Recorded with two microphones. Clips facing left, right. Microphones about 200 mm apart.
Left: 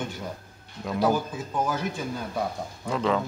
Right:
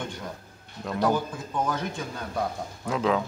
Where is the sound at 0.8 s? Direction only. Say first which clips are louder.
Left 1 dB; 5° left (ahead or behind).